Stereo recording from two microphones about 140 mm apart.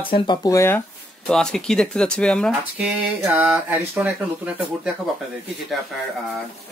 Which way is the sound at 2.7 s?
10° right (ahead or behind).